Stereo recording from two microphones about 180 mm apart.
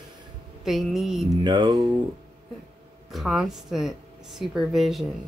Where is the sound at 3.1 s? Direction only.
Centre (ahead or behind).